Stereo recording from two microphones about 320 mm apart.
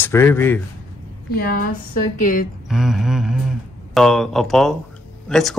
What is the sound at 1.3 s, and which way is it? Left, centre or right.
A woman's voice, left.